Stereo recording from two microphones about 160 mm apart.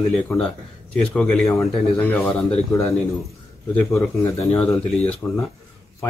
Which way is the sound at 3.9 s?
20° left (ahead or behind).